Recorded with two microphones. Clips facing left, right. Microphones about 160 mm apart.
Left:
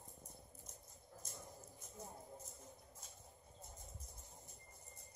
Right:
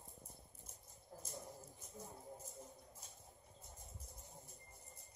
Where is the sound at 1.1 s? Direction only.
40° right (ahead or behind).